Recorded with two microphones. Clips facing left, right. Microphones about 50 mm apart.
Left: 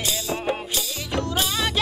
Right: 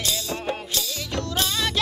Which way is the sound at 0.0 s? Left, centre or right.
Centre.